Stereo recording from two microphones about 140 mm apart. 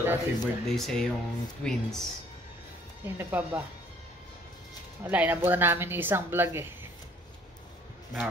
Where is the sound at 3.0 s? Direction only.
15° right (ahead or behind).